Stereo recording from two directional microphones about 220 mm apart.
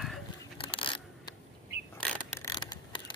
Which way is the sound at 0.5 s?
25° left (ahead or behind).